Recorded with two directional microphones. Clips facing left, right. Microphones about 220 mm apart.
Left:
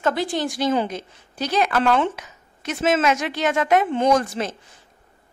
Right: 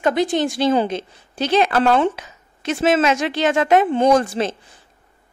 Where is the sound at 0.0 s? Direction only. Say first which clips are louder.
Right 4 dB; 20° right (ahead or behind).